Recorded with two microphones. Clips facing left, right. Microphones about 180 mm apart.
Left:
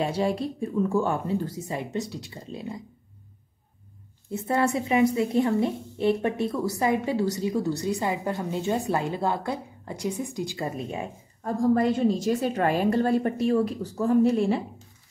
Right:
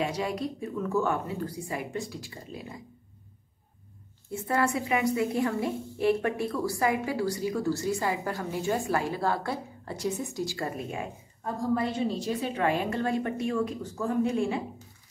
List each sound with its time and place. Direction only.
0.0 s a woman's voice: 30° left (ahead or behind)
4.3 s a woman's voice: 20° left (ahead or behind)
11.7 s a woman's voice: 45° left (ahead or behind)